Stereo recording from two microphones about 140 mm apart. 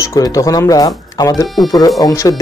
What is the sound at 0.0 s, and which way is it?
Speech, 20° left (ahead or behind).